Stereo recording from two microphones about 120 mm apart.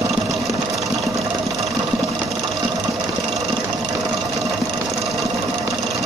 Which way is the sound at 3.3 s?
Centre (ahead or behind).